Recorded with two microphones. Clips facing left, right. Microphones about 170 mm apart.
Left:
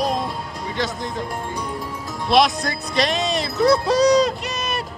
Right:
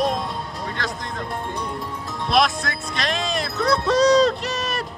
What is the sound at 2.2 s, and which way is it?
Speech, centre (ahead or behind).